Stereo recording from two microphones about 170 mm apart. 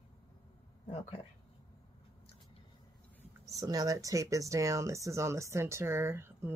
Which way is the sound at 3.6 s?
20° right (ahead or behind).